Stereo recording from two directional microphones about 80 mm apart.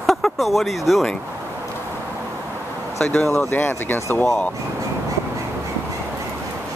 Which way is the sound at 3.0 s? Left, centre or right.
Centre.